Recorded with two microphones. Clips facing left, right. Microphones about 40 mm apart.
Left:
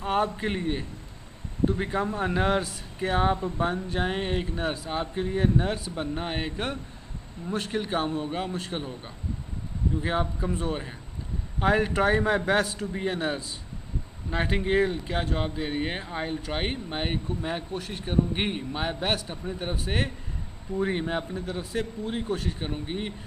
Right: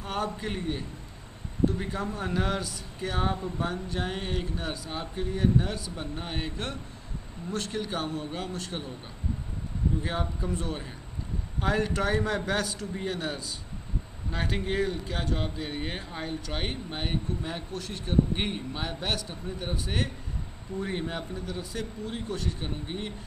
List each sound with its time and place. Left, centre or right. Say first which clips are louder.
0.0 s speech: left 6 dB; left
10.0 s speech: left 4 dB; centre